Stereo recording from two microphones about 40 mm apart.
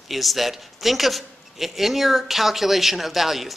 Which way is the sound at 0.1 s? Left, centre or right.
Centre.